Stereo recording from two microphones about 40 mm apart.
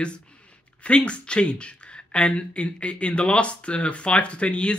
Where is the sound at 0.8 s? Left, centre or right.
Left.